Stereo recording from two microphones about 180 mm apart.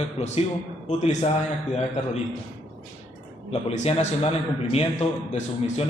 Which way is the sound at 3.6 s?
35° left (ahead or behind).